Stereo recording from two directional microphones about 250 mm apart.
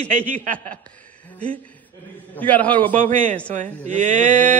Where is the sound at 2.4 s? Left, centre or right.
Centre.